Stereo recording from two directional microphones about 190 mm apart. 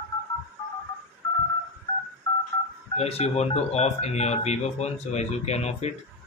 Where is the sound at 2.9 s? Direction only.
35° left (ahead or behind).